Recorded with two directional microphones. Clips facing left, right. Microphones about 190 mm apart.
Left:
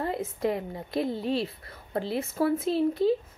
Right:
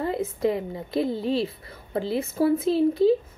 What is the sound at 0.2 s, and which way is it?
A woman's voice, 25° right (ahead or behind).